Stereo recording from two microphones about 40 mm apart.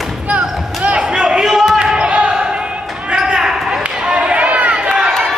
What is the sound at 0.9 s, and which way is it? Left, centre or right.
Basketball bounce, right.